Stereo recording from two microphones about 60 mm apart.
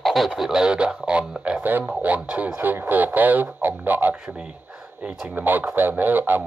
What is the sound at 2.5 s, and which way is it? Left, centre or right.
Speech, right.